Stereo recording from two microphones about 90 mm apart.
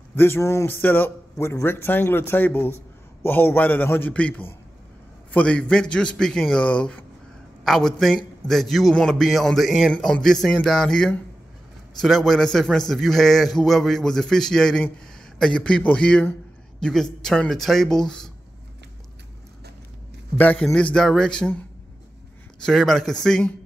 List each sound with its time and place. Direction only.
0.1 s a man's voice: 25° left (ahead or behind); by 18.3 s 5° left (ahead or behind)
20.3 s a man's voice: 15° left (ahead or behind)
22.7 s speech: 5° left (ahead or behind)